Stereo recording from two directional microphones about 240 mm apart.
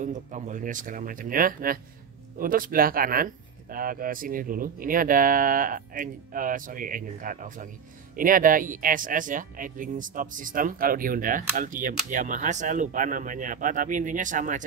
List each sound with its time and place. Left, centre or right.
0.0 s speech: right